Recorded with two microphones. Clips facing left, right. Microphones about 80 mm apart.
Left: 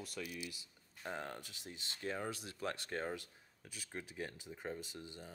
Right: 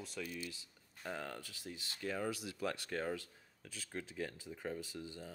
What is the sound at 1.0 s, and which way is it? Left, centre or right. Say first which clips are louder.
Speech: even; left.